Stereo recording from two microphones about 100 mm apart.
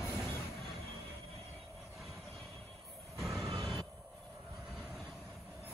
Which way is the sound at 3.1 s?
Centre (ahead or behind).